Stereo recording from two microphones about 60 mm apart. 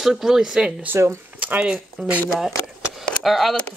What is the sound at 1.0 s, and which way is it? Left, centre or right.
Speech, right.